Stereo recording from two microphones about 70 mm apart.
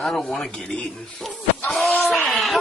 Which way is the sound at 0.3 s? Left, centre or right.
Centre.